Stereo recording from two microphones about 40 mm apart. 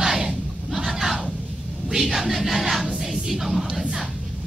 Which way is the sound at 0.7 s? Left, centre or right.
Centre.